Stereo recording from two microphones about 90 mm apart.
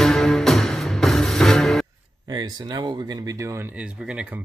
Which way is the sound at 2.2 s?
50° right (ahead or behind).